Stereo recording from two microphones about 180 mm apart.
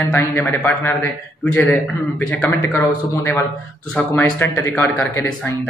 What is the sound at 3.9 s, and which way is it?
A man's voice, 10° left (ahead or behind).